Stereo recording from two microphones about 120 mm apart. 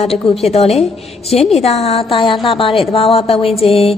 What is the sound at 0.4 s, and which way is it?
A woman's voice, 60° left (ahead or behind).